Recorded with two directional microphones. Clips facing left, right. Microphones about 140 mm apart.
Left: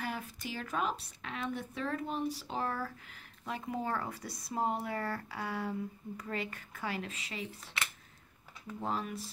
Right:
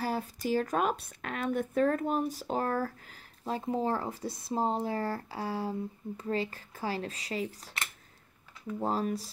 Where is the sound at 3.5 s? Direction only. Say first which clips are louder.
Right 6 dB; 30° right (ahead or behind).